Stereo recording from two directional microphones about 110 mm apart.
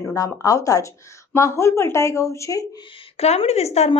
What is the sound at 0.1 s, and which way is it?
A woman's voice, 30° left (ahead or behind).